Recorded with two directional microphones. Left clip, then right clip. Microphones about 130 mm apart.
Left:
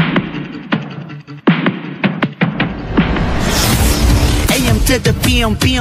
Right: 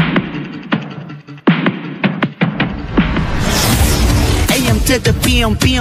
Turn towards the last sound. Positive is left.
turn(degrees=0)  # may be behind; listen again after turning